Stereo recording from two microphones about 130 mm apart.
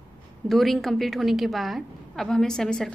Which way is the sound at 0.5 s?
Centre (ahead or behind).